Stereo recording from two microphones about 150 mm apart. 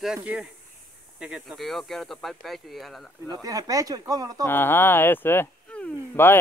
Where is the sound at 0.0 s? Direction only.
5° right (ahead or behind).